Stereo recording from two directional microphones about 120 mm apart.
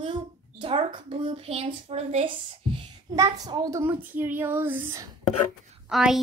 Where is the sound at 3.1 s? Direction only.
30° right (ahead or behind).